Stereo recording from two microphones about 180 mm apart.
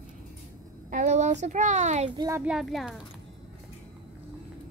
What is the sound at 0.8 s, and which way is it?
A child's voice, 45° right (ahead or behind).